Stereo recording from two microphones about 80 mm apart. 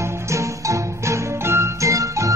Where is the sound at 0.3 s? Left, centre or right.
Right.